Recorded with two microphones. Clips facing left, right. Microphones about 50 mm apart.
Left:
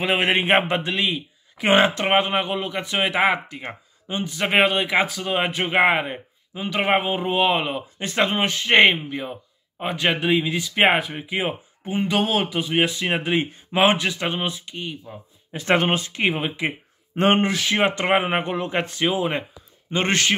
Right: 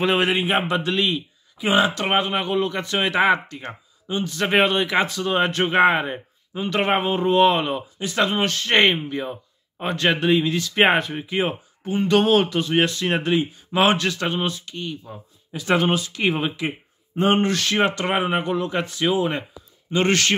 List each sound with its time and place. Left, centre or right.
0.3 s speech: left
0.8 s speech: centre
1.6 s speech: left
2.0 s speech: left
2.5 s speech: centre
8.0 s a man's voice: left; by 15.0 s centre
15.5 s speech: left
16.3 s speech: centre
17.1 s speech: left
17.5 s speech: centre; by 19.0 s left
19.0 s speech: centre